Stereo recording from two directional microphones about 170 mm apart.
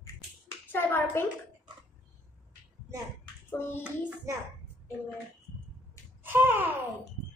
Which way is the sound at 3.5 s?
10° left (ahead or behind).